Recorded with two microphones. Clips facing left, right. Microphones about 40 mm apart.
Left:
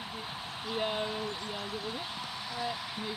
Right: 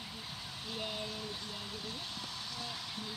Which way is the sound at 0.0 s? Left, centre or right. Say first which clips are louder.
Left 6 dB; left.